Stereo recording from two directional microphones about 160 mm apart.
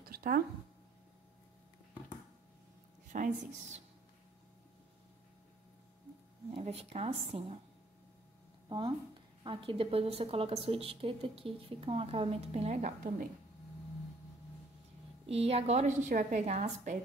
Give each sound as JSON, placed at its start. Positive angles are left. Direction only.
{"t": 0.0, "sound": "a sound", "side_deg": -70}
{"t": 3.1, "sound": "a woman's voice", "side_deg": -50}
{"t": 6.5, "sound": "a woman's voice", "side_deg": -40}
{"t": 8.6, "sound": "a sound", "side_deg": -30}
{"t": 9.4, "sound": "a woman's voice", "side_deg": -35}
{"t": 15.2, "sound": "a woman's voice", "side_deg": -40}